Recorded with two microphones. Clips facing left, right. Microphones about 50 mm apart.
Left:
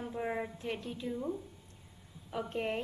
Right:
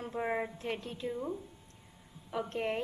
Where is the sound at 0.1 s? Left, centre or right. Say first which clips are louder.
Right 3 dB; centre.